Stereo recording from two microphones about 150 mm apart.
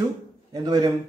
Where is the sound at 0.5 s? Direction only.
30° right (ahead or behind).